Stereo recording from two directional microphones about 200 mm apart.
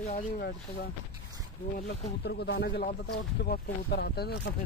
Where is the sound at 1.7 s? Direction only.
55° left (ahead or behind).